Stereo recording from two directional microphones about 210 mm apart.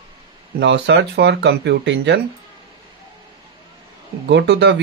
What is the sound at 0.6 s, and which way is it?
Speech, 55° right (ahead or behind).